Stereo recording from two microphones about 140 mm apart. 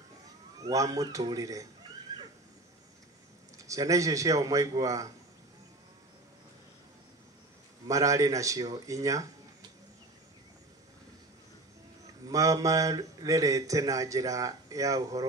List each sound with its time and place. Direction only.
0.7 s a man's voice: 25° right (ahead or behind)
2.1 s a sound: 25° right (ahead or behind)
3.5 s a man's voice: 25° right (ahead or behind)
7.9 s a man's voice: 25° right (ahead or behind)
12.3 s a man's voice: 25° right (ahead or behind)